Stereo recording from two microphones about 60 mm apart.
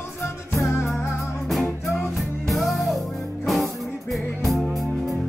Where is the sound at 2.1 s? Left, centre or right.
Centre.